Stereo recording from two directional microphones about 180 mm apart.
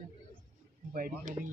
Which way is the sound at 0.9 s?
55° right (ahead or behind).